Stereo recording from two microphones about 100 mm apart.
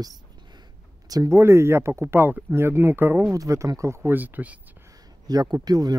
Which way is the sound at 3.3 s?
35° right (ahead or behind).